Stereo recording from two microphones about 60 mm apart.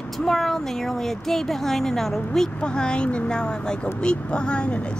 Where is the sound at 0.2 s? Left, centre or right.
Centre.